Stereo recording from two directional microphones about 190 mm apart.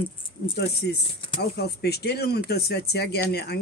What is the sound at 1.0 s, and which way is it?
Speech, 30° left (ahead or behind).